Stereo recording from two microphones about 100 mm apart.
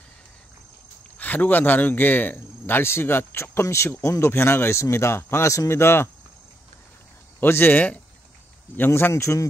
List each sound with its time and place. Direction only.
1.1 s speech: 15° left (ahead or behind)
7.3 s speech: 20° left (ahead or behind)